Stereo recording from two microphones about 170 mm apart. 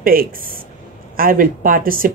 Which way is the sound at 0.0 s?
55° right (ahead or behind).